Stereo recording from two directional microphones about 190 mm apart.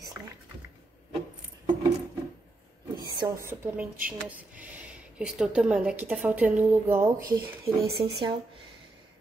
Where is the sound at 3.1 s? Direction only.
15° right (ahead or behind).